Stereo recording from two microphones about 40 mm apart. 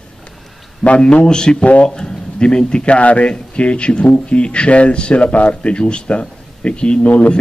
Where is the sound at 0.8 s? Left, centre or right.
Left.